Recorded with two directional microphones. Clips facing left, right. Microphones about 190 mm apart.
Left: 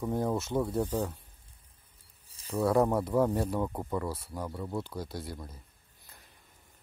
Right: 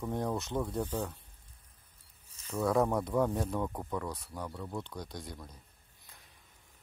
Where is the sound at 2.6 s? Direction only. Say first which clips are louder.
Left 3 dB; centre (ahead or behind).